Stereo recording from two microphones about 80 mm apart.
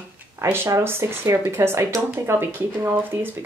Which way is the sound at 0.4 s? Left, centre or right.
Right.